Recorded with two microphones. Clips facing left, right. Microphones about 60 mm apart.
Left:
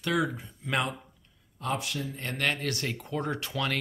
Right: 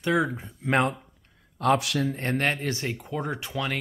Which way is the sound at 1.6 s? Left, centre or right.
Right.